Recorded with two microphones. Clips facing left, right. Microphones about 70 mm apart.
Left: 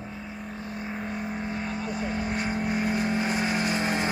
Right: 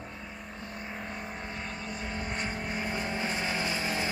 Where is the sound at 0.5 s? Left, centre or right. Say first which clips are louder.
Left 5 dB; centre.